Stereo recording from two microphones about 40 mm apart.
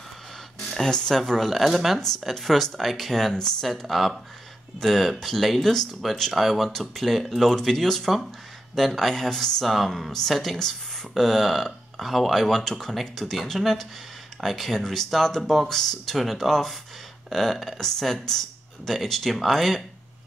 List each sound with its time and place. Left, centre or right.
0.8 s speech: centre
6.3 s speech: centre